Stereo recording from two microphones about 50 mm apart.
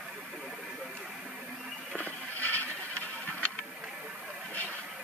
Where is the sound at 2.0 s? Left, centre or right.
Left.